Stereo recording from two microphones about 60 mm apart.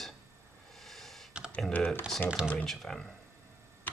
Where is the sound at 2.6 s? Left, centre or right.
Centre.